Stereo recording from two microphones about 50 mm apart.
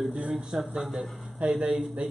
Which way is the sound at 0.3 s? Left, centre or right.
Centre.